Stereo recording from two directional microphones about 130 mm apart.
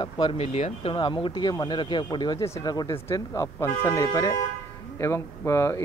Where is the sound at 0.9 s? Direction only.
35° left (ahead or behind).